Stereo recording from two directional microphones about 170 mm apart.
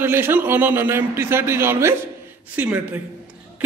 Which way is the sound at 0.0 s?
10° right (ahead or behind).